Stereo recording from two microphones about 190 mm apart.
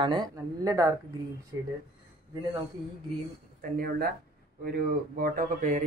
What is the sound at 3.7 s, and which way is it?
Speech, 55° right (ahead or behind).